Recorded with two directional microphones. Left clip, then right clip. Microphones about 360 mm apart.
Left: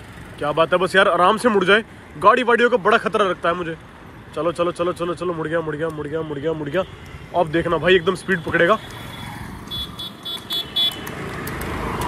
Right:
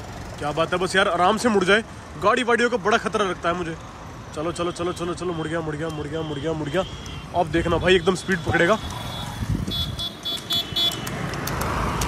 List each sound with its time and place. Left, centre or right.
0.4 s speech: centre
9.7 s vehicle: right